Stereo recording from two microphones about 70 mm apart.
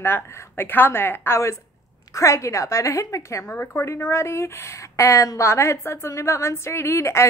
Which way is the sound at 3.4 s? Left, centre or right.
Left.